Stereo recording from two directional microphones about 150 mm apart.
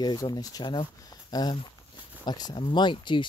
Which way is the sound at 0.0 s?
25° left (ahead or behind).